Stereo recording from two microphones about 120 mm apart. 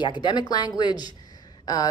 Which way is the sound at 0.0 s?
40° left (ahead or behind).